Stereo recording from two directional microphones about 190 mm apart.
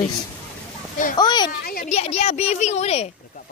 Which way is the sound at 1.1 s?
20° left (ahead or behind).